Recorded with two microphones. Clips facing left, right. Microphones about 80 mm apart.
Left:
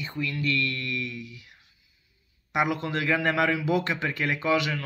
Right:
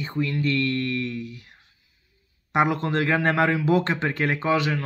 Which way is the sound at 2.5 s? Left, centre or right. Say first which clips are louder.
Right 4 dB; right.